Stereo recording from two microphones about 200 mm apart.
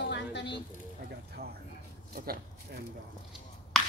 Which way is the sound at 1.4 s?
50° right (ahead or behind).